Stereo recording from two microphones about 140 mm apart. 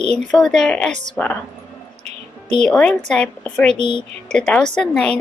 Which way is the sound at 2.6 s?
5° left (ahead or behind).